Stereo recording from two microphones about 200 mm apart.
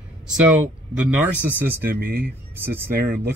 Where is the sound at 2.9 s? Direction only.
50° right (ahead or behind).